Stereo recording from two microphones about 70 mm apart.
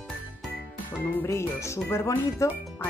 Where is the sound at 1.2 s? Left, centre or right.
Left.